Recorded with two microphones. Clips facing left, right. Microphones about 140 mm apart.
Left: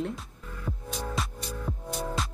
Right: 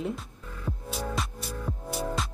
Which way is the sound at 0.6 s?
5° right (ahead or behind).